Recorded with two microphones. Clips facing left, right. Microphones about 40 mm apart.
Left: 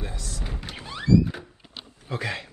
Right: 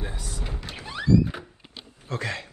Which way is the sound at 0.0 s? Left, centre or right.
Right.